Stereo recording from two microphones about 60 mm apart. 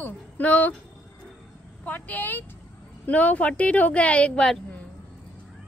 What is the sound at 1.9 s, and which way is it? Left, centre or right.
A woman's voice, left.